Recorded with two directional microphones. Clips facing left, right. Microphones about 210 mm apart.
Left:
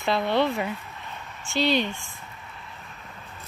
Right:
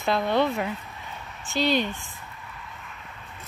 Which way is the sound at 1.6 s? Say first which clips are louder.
Even; 45° right (ahead or behind).